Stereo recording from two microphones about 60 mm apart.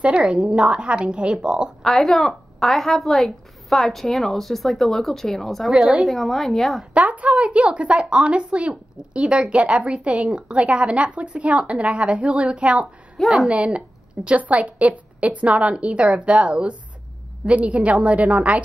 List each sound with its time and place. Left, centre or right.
0.0 s a woman's voice: centre
1.8 s a woman's voice: centre
6.9 s a woman's voice: right
13.2 s a woman's voice: centre
13.5 s a woman's voice: centre